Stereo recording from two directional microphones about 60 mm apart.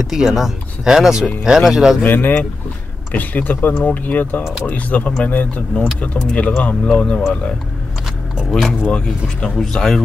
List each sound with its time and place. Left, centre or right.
0.0 s speech: centre
2.0 s speech: left
8.5 s speech: centre